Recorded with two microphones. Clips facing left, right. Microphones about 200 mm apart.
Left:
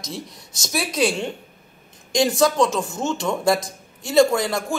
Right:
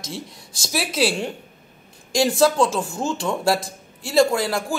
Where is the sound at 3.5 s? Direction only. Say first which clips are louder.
Left 1 dB; 30° right (ahead or behind).